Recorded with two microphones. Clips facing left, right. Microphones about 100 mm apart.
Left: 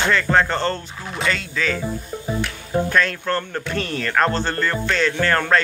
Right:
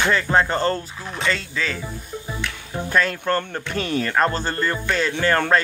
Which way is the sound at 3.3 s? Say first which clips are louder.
Even; 10° right (ahead or behind).